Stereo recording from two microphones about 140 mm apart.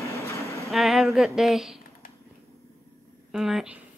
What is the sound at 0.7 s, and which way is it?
Speech, centre (ahead or behind).